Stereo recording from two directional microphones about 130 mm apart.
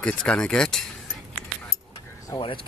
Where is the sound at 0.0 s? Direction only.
5° left (ahead or behind).